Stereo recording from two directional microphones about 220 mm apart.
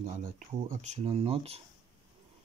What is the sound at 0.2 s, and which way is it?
Speech, 35° right (ahead or behind).